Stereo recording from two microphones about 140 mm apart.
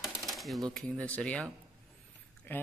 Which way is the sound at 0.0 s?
Centre (ahead or behind).